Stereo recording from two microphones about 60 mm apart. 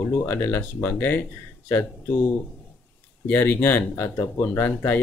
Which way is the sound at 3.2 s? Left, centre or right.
Left.